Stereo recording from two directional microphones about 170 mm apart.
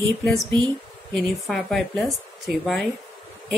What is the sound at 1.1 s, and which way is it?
A woman's voice, centre (ahead or behind).